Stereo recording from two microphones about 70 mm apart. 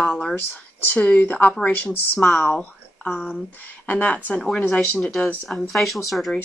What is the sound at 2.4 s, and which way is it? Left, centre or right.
Speech, centre.